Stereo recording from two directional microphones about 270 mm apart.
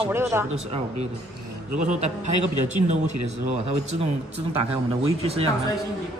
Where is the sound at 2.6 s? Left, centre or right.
Right.